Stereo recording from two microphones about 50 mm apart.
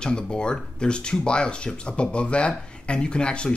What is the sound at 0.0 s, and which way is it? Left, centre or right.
Speech, centre.